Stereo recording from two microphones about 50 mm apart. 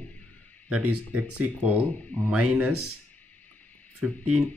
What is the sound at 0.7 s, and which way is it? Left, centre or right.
Speech, right.